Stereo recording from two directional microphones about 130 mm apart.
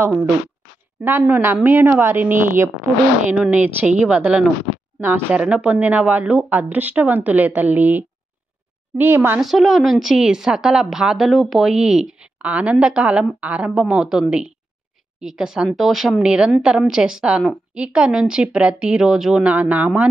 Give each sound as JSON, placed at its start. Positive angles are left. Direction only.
{"t": 0.0, "sound": "a woman's voice", "side_deg": -20}
{"t": 9.4, "sound": "a woman's voice", "side_deg": 0}